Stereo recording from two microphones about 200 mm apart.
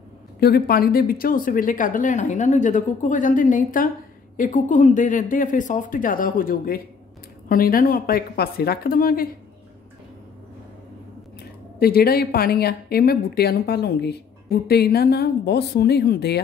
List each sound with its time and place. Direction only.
0.4 s speech: 50° left (ahead or behind)
11.8 s speech: 50° left (ahead or behind)